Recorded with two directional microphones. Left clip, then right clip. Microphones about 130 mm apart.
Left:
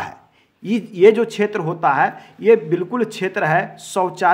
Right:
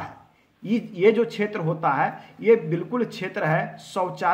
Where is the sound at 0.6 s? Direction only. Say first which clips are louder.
Left 7 dB; 40° left (ahead or behind).